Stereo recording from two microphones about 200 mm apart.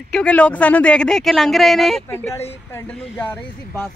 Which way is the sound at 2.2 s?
10° left (ahead or behind).